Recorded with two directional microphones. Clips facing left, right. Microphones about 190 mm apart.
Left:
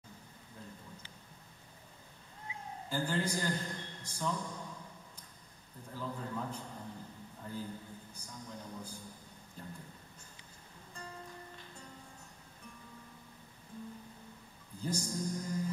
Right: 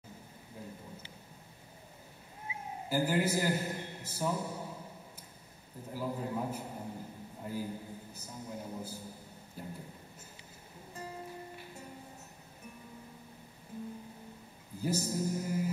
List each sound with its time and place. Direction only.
2.4 s cat: 15° right (ahead or behind)
5.9 s a man's voice: 15° right (ahead or behind)
6.6 s a sound: 20° right (ahead or behind)
7.4 s a man's voice: 10° right (ahead or behind)
8.3 s a man's voice: 25° right (ahead or behind)
9.6 s a sound: 10° right (ahead or behind)
11.1 s music: 10° right (ahead or behind)
14.8 s music: 5° right (ahead or behind)